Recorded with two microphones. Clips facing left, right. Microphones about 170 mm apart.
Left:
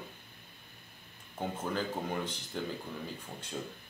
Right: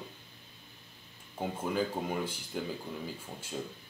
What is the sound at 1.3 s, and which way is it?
A man's voice, 10° right (ahead or behind).